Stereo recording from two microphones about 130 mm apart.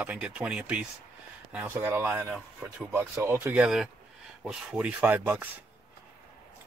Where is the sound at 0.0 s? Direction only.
10° right (ahead or behind).